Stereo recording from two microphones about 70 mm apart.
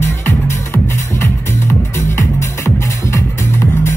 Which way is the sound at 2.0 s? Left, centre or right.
Left.